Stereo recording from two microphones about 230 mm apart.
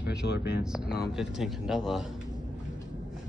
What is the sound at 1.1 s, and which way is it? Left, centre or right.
Speech, centre.